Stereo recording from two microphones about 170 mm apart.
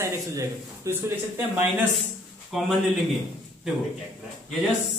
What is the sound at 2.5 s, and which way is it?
Speech, centre (ahead or behind).